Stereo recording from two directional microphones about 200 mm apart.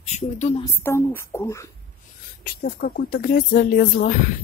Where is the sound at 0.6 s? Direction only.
15° left (ahead or behind).